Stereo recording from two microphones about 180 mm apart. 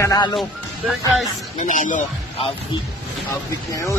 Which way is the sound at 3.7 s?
15° left (ahead or behind).